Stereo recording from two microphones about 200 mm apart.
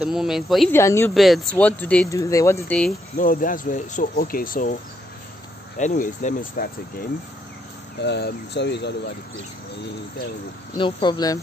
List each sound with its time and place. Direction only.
0.0 s speech: centre (ahead or behind)
0.7 s speech: 15° left (ahead or behind)
1.1 s speech: centre (ahead or behind)
3.2 s speech: 45° left (ahead or behind)
5.8 s speech: 35° left (ahead or behind)
8.0 s speech: 60° left (ahead or behind)
10.8 s speech: 20° left (ahead or behind)